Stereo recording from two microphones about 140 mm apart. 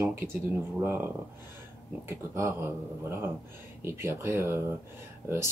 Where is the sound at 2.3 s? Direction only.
20° right (ahead or behind).